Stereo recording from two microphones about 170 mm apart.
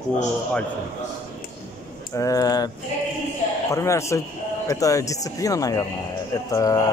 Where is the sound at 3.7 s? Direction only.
15° left (ahead or behind).